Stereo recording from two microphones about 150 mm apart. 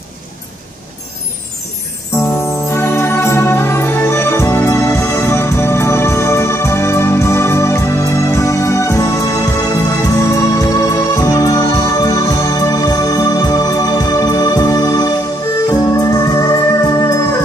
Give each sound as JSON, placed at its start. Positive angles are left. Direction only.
{"t": 2.1, "sound": "music", "side_deg": 20}